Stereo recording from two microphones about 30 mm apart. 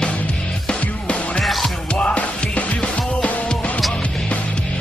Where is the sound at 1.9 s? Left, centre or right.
Left.